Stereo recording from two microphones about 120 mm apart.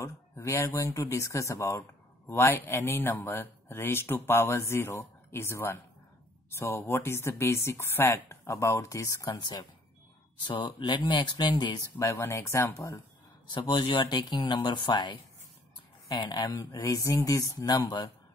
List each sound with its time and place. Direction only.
0.0 s speech: 25° left (ahead or behind)
13.5 s speech: 40° left (ahead or behind)